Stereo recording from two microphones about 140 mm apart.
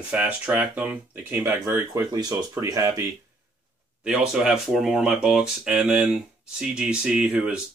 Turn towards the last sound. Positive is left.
turn(degrees=-10)  # may be behind; listen again after turning